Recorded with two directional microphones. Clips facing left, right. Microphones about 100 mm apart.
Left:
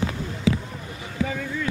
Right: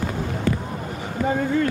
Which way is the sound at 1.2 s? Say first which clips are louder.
Right 6 dB; 45° right (ahead or behind).